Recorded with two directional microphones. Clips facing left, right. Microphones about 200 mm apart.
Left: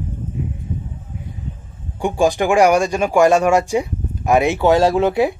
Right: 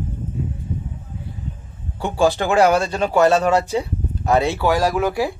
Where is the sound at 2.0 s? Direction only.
15° left (ahead or behind).